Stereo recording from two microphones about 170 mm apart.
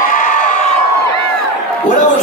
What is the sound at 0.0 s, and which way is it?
Crowd, 55° left (ahead or behind).